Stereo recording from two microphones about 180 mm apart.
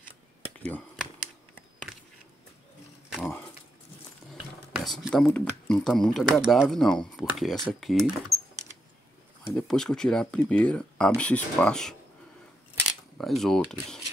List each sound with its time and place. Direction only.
0.6 s speech: 10° left (ahead or behind)
4.7 s speech: centre (ahead or behind)
9.5 s speech: centre (ahead or behind)
12.8 s cutlery: centre (ahead or behind)